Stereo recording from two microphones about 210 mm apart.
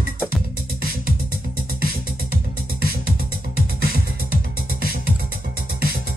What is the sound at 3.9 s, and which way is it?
Music, 45° right (ahead or behind).